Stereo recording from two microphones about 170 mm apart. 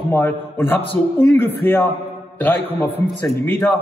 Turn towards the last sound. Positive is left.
turn(degrees=10)  # may be behind; listen again after turning